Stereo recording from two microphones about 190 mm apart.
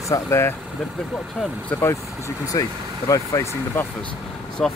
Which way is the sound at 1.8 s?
15° left (ahead or behind).